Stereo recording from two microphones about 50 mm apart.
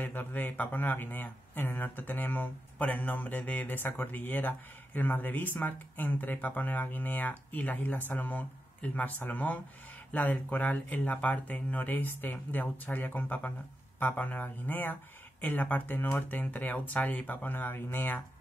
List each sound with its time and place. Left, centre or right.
0.0 s speech: left